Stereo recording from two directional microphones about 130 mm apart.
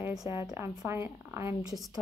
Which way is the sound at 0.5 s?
20° right (ahead or behind).